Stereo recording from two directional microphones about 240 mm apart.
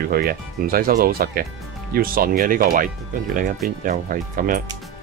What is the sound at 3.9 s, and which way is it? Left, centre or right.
Speech, right.